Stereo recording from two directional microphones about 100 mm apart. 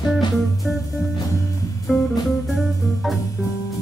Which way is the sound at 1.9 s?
Centre (ahead or behind).